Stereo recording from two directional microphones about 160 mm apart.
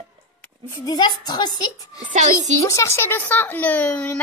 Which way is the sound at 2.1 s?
50° right (ahead or behind).